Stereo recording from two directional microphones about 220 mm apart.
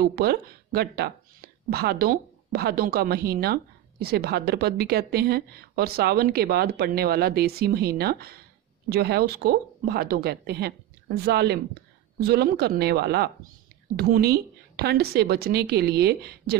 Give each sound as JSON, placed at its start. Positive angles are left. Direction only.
{"t": 0.0, "sound": "speech", "side_deg": -45}